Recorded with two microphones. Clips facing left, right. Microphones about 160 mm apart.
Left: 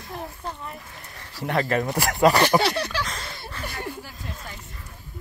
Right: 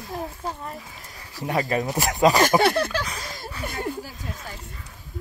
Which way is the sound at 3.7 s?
50° right (ahead or behind).